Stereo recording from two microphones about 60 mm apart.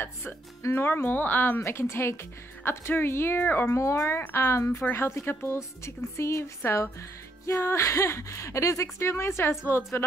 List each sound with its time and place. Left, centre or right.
0.7 s a woman's voice: left
1.6 s a woman's voice: left
3.7 s a woman's voice: left
5.9 s a woman's voice: left